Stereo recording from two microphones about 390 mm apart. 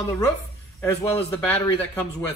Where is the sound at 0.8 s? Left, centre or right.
Centre.